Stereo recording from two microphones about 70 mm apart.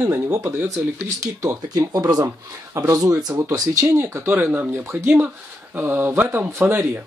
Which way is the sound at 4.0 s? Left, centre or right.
Right.